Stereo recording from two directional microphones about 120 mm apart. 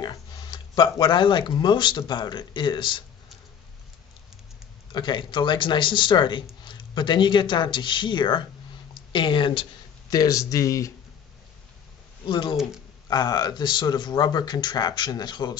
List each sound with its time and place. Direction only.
0.0 s speech: 35° left (ahead or behind)
4.9 s speech: 40° left (ahead or behind)
10.0 s a man's voice: 30° left (ahead or behind)
12.3 s speech: 40° left (ahead or behind)